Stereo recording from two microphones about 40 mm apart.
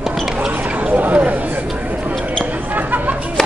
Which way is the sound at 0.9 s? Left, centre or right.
Right.